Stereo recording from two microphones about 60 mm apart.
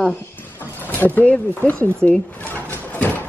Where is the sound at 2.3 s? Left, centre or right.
Left.